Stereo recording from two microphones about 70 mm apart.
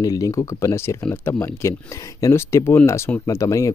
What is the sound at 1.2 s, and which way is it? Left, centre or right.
Speech, left.